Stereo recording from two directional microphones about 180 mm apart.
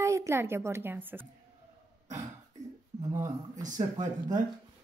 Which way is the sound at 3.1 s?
15° right (ahead or behind).